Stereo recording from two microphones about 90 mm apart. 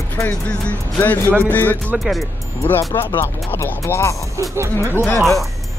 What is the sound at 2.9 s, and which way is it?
Speech, 25° left (ahead or behind).